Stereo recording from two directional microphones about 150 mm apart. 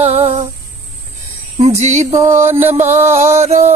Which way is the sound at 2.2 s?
15° right (ahead or behind).